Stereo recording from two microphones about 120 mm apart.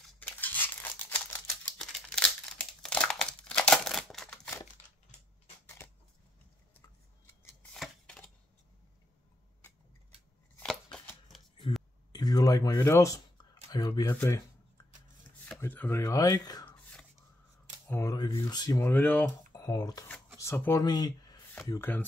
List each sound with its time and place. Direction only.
0.2 s crumpling: 15° left (ahead or behind)
7.7 s a sound: 5° left (ahead or behind)
10.6 s shuffling cards: 5° left (ahead or behind)
12.1 s speech: 35° left (ahead or behind)
15.6 s speech: 20° left (ahead or behind)
17.8 s speech: 25° left (ahead or behind)
18.1 s speech: 40° left (ahead or behind)
18.9 s speech: 15° left (ahead or behind)
19.5 s speech: 35° left (ahead or behind)
20.3 s speech: 20° left (ahead or behind)
20.8 s speech: 35° left (ahead or behind)
21.6 s speech: 20° left (ahead or behind)